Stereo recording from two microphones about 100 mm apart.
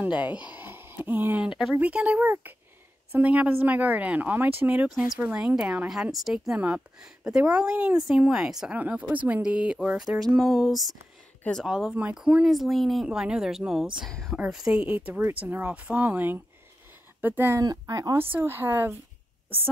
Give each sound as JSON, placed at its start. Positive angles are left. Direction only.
{"t": 0.0, "sound": "speech", "side_deg": -15}
{"t": 1.5, "sound": "a woman's voice", "side_deg": -5}
{"t": 17.6, "sound": "speech", "side_deg": -40}
{"t": 18.3, "sound": "speech", "side_deg": -20}